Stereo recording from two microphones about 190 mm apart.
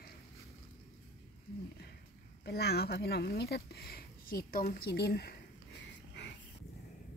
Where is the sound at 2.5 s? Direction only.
55° left (ahead or behind).